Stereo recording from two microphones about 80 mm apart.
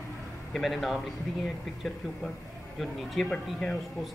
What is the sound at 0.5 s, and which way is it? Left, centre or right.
Speech, centre.